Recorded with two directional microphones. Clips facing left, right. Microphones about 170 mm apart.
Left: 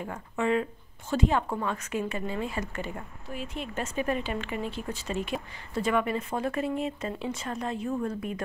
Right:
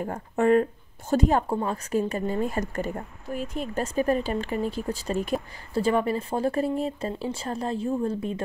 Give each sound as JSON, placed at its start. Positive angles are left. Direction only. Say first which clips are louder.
{"t": 0.0, "sound": "a woman's voice", "louder": "right 6 dB", "side_deg": -45}